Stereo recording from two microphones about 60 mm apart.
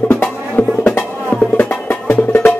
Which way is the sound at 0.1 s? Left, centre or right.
Left.